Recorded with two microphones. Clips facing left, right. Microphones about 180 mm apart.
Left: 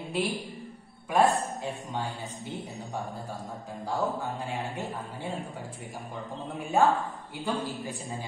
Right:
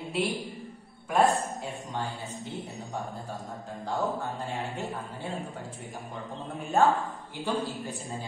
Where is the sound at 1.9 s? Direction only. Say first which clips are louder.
Even; 15° left (ahead or behind).